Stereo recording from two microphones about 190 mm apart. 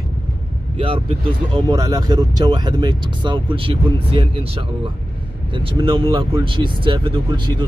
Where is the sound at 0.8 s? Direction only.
30° right (ahead or behind).